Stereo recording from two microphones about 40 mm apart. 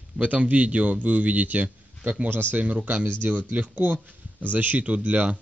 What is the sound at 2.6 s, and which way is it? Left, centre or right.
A man's voice, right.